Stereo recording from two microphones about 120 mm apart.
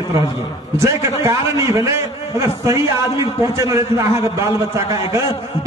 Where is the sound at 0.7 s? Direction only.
25° right (ahead or behind).